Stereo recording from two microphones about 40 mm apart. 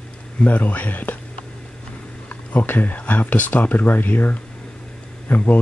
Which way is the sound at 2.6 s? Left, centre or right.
Left.